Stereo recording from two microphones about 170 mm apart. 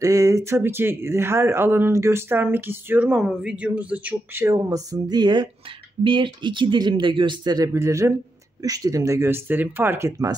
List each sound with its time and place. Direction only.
0.0 s speech: 20° right (ahead or behind)